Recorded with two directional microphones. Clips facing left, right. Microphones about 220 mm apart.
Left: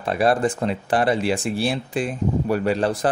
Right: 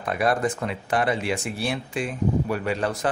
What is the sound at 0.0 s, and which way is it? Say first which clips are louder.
Speech: left 4 dB; 30° left (ahead or behind).